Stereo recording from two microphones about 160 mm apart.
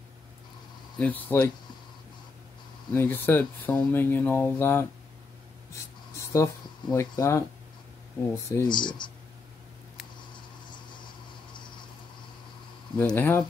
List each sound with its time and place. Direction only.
0.9 s speech: 10° left (ahead or behind)
2.9 s speech: 15° left (ahead or behind)
5.7 s a sound: 20° left (ahead or behind)
8.6 s speech: 30° left (ahead or behind)
10.3 s a sound: 30° left (ahead or behind)
13.0 s speech: 10° left (ahead or behind)